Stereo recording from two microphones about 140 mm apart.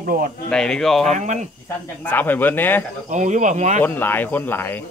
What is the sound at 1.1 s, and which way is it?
Speech, 60° right (ahead or behind).